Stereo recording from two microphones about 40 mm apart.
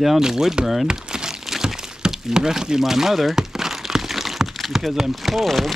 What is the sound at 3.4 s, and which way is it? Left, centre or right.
Crumpling, centre.